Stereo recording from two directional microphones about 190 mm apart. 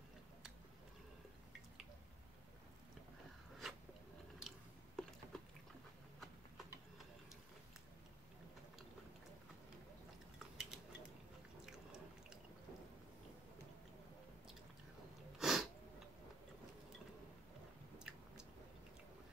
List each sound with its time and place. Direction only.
4.4 s chewing: centre (ahead or behind)
10.6 s a sound: 5° right (ahead or behind)
15.3 s sneeze: centre (ahead or behind)
17.9 s chewing: 5° right (ahead or behind)